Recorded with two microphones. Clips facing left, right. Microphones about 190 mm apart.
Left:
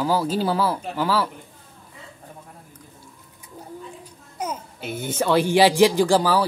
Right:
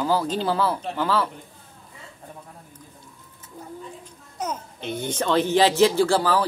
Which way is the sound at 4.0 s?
10° left (ahead or behind).